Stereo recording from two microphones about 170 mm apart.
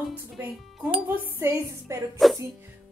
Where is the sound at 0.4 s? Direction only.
15° right (ahead or behind).